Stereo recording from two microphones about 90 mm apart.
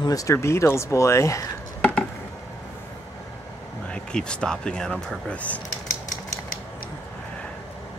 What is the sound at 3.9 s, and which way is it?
Speech, 10° left (ahead or behind).